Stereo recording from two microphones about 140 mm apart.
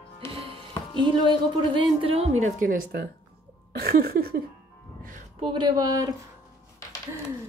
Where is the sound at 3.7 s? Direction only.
90° right.